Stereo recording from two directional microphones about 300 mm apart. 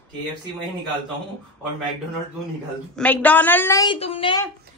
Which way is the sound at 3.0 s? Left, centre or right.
Centre.